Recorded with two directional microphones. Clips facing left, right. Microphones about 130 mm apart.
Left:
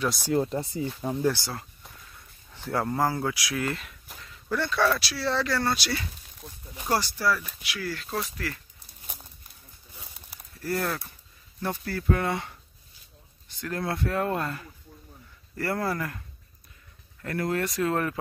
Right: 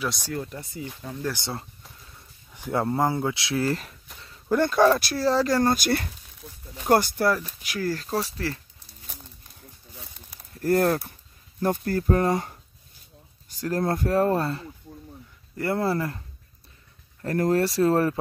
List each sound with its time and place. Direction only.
0.0 s speech: centre (ahead or behind)
0.3 s speech: 30° left (ahead or behind)
1.3 s speech: 25° right (ahead or behind)
2.5 s a sound: 15° right (ahead or behind)
2.8 s speech: 25° right (ahead or behind)
4.5 s speech: 45° right (ahead or behind)
9.0 s livestock: 10° left (ahead or behind)
10.6 s speech: 50° right (ahead or behind); by 16.2 s 30° right (ahead or behind)
17.2 s speech: 40° right (ahead or behind)